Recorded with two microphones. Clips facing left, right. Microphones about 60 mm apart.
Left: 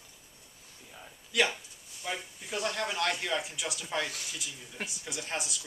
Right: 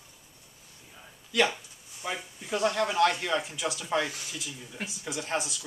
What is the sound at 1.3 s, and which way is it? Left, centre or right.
Speech, centre.